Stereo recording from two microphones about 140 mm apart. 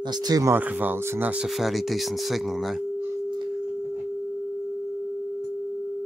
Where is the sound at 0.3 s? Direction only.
25° right (ahead or behind).